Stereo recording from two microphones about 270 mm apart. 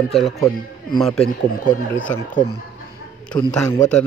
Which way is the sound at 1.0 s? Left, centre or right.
Centre.